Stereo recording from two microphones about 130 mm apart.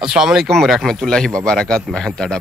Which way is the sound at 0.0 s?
5° right (ahead or behind).